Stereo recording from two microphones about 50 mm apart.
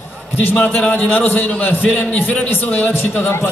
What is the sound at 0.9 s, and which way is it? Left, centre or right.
A man's voice, left.